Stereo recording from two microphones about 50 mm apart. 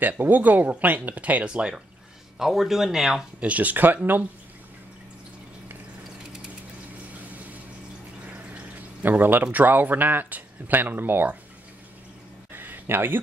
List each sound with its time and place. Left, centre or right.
0.0 s speech: right
1.5 s speech: right
2.3 s speech: centre
3.3 s speech: right
8.3 s a sound: right
9.4 s speech: right
12.5 s a sound: right